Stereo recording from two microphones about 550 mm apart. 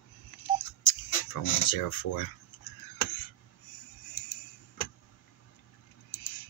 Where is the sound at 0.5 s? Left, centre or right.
Left.